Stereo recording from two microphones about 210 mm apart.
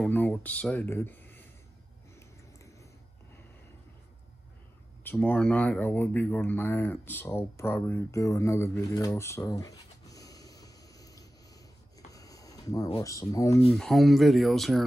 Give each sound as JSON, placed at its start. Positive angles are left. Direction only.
{"t": 0.0, "sound": "speech", "side_deg": 10}
{"t": 2.1, "sound": "a sound", "side_deg": 15}
{"t": 5.0, "sound": "speech", "side_deg": 5}
{"t": 12.1, "sound": "a sound", "side_deg": 15}
{"t": 13.0, "sound": "speech", "side_deg": 15}
{"t": 13.7, "sound": "speech", "side_deg": 0}